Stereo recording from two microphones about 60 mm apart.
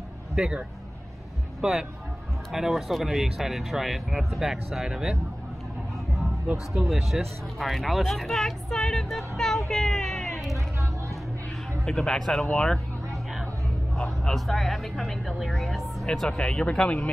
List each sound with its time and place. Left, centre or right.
0.4 s speech: centre
6.7 s speech: centre
7.0 s speech: centre
9.7 s a sound: centre
11.8 s speech: centre
13.9 s a sound: centre
14.3 s speech: centre
16.3 s speech: centre